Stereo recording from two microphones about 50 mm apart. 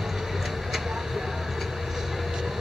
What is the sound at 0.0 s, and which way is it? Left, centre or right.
Vehicle, centre.